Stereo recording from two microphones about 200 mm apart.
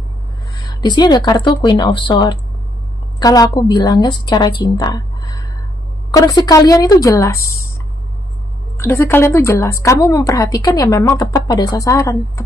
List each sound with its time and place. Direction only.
0.7 s speech: 20° left (ahead or behind)
4.6 s a sound: 20° left (ahead or behind)
6.1 s a woman's voice: 20° left (ahead or behind)
8.7 s a woman's voice: 10° left (ahead or behind)